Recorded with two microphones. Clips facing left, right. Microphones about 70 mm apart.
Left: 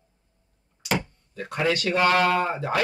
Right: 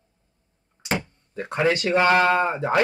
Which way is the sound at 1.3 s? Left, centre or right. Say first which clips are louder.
Right 3 dB; right.